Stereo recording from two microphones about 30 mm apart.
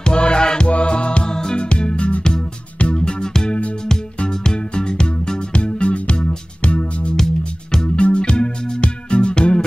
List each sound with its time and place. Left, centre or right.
0.0 s music: left
0.7 s music: left
1.3 s music: left
7.7 s music: left